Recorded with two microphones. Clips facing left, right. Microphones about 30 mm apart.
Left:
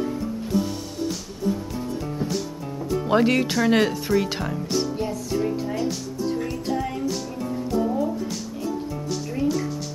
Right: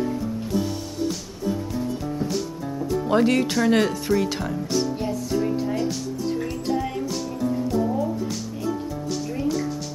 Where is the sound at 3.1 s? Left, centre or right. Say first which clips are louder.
Even; centre.